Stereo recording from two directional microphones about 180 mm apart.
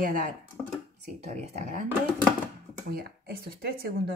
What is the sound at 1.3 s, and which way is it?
Speech, 40° right (ahead or behind).